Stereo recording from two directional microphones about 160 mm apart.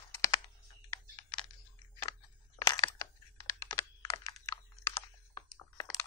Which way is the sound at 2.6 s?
20° left (ahead or behind).